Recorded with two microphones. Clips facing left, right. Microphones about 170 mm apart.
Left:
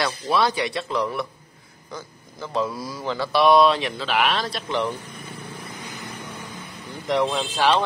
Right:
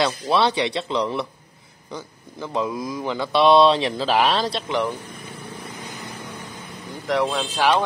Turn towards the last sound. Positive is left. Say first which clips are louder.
# right 1 dB
turn(degrees=-15)  # may be behind; listen again after turning